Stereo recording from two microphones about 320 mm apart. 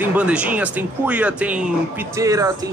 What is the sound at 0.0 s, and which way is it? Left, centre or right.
A man's voice, centre.